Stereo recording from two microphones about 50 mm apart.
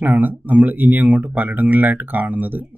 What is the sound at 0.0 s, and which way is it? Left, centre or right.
Speech, right.